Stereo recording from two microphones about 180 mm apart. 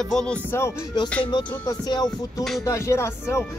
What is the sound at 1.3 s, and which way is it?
Music, 25° left (ahead or behind).